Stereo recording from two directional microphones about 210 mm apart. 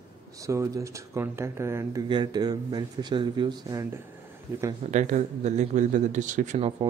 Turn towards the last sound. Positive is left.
turn(degrees=-30)  # may be behind; listen again after turning